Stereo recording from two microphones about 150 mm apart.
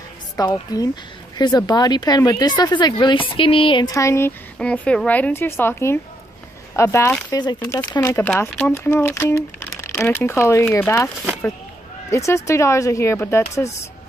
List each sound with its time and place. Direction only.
0.4 s a woman's voice: 25° left (ahead or behind)
1.7 s a woman's voice: 30° left (ahead or behind)
3.9 s a woman's voice: 20° left (ahead or behind)
4.6 s speech: 10° left (ahead or behind)
7.2 s a woman's voice: 30° left (ahead or behind)
12.1 s a woman's voice: 20° left (ahead or behind)